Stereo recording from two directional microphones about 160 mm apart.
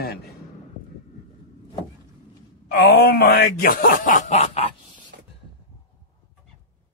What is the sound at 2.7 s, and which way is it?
Speech, 90° left.